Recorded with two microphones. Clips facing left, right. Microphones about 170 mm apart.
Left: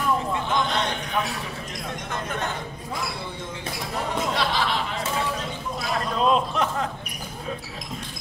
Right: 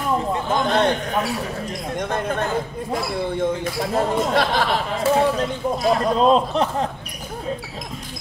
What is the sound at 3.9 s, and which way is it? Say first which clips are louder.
Speech: right 7 dB; 50° right (ahead or behind).